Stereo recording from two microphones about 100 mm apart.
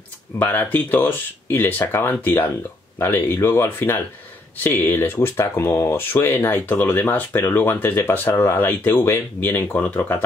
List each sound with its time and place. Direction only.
0.4 s speech: 20° left (ahead or behind)